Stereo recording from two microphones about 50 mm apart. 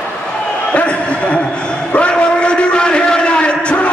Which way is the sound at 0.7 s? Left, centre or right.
Left.